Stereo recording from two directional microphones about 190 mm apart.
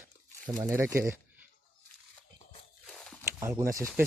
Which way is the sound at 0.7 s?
15° right (ahead or behind).